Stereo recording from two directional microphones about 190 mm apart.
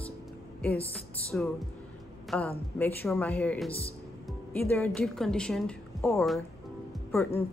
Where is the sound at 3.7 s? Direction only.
30° left (ahead or behind).